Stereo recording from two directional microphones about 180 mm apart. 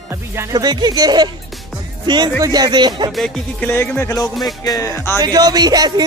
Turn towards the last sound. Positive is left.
turn(degrees=-20)  # may be behind; listen again after turning